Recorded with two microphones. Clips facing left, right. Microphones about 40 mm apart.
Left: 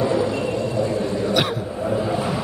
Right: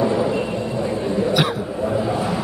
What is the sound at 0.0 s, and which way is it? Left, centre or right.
Vehicle, centre.